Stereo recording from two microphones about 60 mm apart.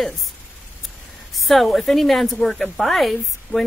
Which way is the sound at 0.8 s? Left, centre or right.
Centre.